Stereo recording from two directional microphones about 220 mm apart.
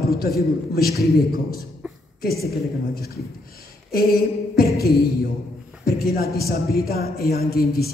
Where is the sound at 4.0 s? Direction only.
45° left (ahead or behind).